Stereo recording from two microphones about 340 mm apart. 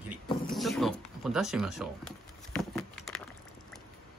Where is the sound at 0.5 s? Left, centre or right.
Centre.